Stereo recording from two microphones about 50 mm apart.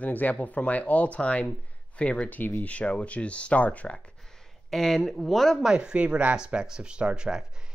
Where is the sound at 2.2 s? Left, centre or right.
Left.